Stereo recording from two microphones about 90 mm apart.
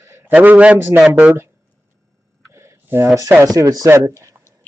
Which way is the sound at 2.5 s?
30° right (ahead or behind).